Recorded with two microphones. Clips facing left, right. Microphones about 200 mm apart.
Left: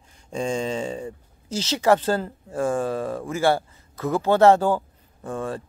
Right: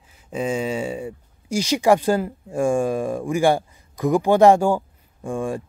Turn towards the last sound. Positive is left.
turn(degrees=-10)  # may be behind; listen again after turning